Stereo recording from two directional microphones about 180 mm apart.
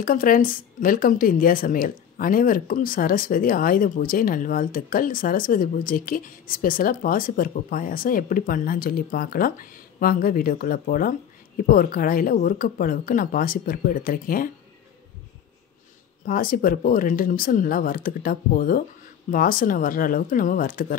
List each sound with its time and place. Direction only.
0.0 s speech: 50° left (ahead or behind)
16.3 s speech: 50° left (ahead or behind)